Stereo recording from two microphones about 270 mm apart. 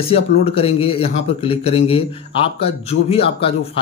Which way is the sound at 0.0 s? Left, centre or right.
Left.